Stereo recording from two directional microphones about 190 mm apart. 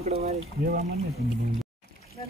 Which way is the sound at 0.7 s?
35° right (ahead or behind).